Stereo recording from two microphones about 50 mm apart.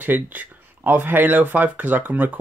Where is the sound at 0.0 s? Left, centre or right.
Right.